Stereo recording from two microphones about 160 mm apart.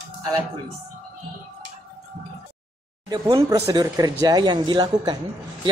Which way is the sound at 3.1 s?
25° right (ahead or behind).